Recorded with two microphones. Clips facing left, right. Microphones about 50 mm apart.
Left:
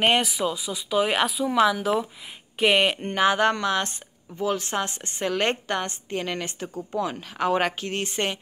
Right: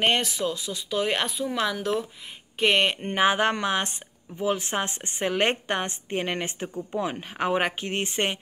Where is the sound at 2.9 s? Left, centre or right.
Centre.